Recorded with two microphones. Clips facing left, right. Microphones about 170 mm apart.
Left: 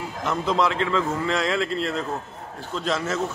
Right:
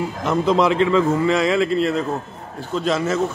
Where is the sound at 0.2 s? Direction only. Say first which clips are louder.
Right 5 dB; 15° right (ahead or behind).